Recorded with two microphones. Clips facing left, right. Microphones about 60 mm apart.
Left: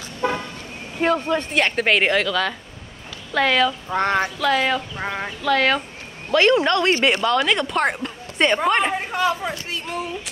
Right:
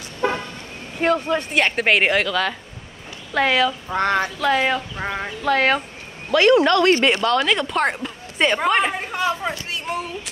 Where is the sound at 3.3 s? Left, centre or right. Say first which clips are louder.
Even; centre.